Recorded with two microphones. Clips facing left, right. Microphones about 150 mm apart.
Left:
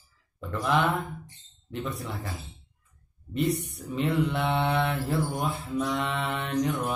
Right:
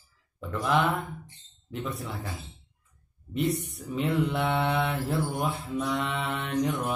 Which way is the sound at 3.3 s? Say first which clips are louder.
Left 1 dB; centre (ahead or behind).